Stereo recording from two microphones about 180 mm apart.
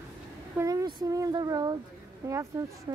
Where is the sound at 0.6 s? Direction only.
20° right (ahead or behind).